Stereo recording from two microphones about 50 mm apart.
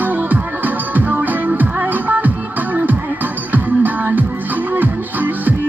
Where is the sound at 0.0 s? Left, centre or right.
Right.